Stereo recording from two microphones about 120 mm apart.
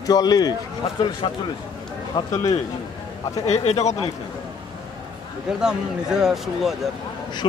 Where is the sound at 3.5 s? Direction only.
65° left (ahead or behind).